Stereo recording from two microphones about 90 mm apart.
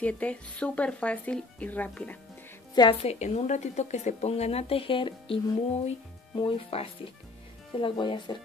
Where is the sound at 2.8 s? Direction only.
55° left (ahead or behind).